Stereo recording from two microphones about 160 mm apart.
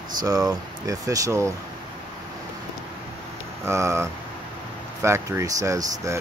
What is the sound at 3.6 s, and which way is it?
Speech, 15° right (ahead or behind).